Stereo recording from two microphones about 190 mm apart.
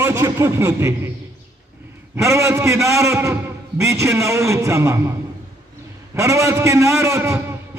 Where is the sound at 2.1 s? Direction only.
15° right (ahead or behind).